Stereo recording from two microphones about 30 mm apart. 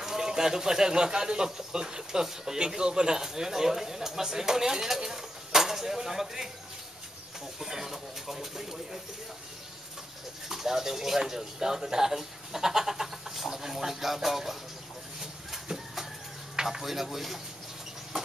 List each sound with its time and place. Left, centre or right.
0.0 s speech: centre
7.6 s speech: centre
10.5 s speech: centre
15.5 s a sound: centre
16.6 s speech: centre